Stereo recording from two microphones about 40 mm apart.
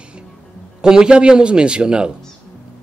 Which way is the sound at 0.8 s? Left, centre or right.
Centre.